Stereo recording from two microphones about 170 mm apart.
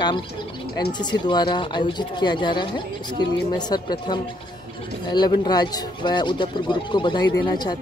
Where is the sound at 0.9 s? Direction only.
25° left (ahead or behind).